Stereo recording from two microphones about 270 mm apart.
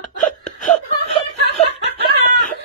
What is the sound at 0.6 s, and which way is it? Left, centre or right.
Chuckle, left.